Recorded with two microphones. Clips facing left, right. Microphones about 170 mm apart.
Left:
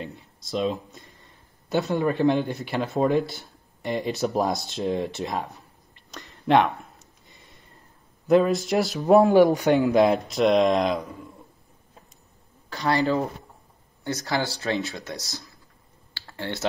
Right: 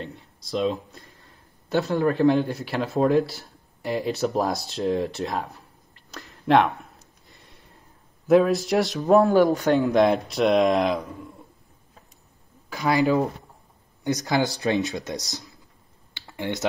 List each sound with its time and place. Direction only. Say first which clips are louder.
0.0 s a sound: even; centre (ahead or behind)
8.3 s speech: right 1 dB; centre (ahead or behind)
9.0 s speech: left 2 dB; 15° left (ahead or behind)
9.8 s speech: even; centre (ahead or behind)
12.6 s speech: right 2 dB; 10° right (ahead or behind)
16.1 s computer keyboard: right 3 dB; 20° right (ahead or behind)